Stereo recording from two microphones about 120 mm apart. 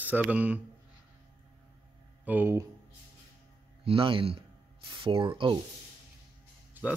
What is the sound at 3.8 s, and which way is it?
Speech, 50° right (ahead or behind).